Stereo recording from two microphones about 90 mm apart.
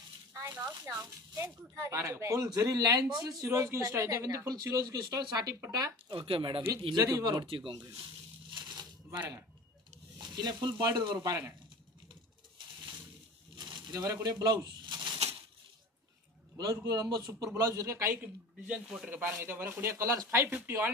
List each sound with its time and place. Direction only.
0.3 s speech: 35° right (ahead or behind)
4.3 s speech: 45° right (ahead or behind)
6.0 s speech: 85° right
7.1 s speech: 45° right (ahead or behind)
7.4 s speech: 65° right (ahead or behind)
8.5 s a sound: 55° right (ahead or behind)
10.2 s speech: 55° right (ahead or behind)
11.1 s speech: 35° right (ahead or behind)
13.6 s crumpling: 50° right (ahead or behind)
15.0 s a sound: 65° right (ahead or behind)
16.9 s speech: 45° right (ahead or behind)
18.2 s speech: 10° right (ahead or behind); by 20.9 s 25° right (ahead or behind)